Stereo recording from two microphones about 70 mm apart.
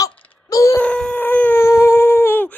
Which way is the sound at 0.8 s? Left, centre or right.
Centre.